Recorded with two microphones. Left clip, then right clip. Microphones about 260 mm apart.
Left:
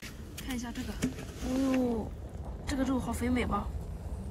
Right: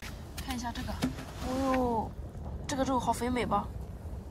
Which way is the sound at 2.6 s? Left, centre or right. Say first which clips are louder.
Right 4 dB; right.